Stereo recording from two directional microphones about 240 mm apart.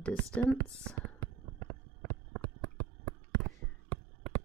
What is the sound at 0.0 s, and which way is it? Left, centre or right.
Speech, centre.